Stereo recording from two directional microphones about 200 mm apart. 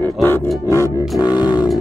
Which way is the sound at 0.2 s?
10° left (ahead or behind).